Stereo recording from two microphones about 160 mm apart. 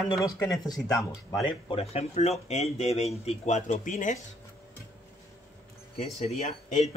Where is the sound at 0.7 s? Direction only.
Centre (ahead or behind).